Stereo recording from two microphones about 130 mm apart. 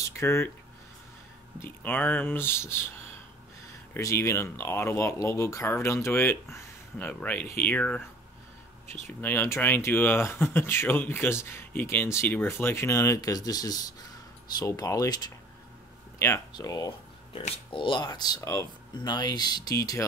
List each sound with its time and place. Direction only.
0.2 s speech: 20° left (ahead or behind)
1.6 s speech: 15° left (ahead or behind)
3.9 s speech: 20° left (ahead or behind)
9.0 s speech: 15° left (ahead or behind)
17.3 s speech: 40° left (ahead or behind); by 20.1 s 25° left (ahead or behind)